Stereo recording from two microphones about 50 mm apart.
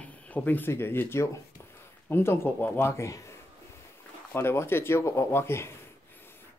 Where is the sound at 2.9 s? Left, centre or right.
Left.